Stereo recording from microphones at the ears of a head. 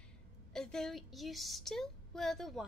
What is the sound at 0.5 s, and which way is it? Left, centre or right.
Speech, centre.